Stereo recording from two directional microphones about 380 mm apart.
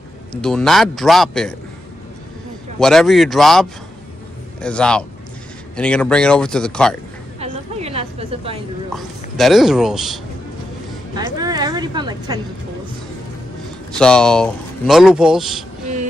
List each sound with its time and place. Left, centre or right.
0.3 s speech: centre
2.8 s speech: centre
7.3 s a sound: centre
8.9 s speech: centre
11.1 s a sound: centre
13.9 s speech: centre